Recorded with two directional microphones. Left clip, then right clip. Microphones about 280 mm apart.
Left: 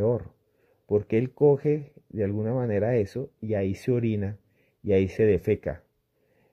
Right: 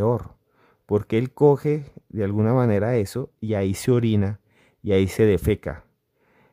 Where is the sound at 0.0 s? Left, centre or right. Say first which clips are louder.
Right 3 dB; centre.